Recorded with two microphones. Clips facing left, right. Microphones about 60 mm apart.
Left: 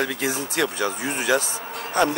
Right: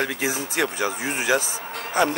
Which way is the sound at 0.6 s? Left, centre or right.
Right.